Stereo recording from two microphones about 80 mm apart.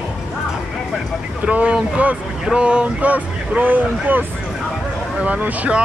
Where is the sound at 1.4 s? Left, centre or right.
Centre.